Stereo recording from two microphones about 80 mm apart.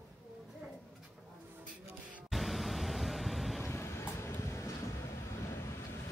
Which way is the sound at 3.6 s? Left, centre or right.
Left.